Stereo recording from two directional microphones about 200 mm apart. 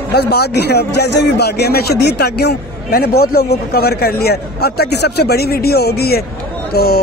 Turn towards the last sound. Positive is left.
turn(degrees=50)  # may be behind; listen again after turning